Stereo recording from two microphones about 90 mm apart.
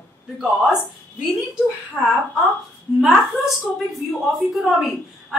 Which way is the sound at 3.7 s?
Centre (ahead or behind).